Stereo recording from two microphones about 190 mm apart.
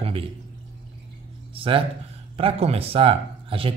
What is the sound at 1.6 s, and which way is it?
Speech, 30° right (ahead or behind).